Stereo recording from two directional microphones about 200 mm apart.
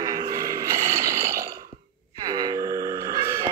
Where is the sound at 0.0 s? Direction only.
20° right (ahead or behind).